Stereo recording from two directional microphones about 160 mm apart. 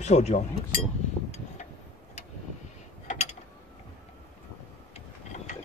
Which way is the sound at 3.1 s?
45° left (ahead or behind).